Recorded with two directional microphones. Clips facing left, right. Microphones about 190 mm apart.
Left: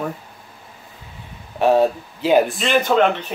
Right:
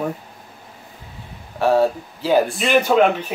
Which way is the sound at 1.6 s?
15° left (ahead or behind).